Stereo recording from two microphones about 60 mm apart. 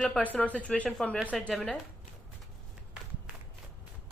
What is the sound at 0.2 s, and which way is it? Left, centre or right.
Speech, left.